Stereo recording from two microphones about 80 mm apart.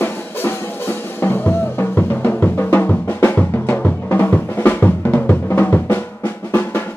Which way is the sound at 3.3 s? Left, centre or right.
Centre.